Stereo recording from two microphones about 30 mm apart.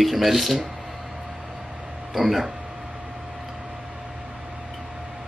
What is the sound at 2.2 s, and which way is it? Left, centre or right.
Speech, centre.